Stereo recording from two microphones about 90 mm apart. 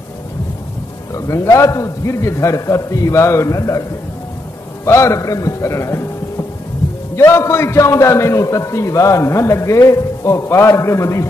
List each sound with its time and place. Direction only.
1.1 s a man's voice: 35° left (ahead or behind)
4.8 s a man's voice: 30° left (ahead or behind)